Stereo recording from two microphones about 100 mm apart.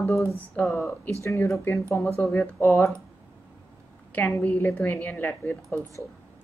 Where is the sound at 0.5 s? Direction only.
15° left (ahead or behind).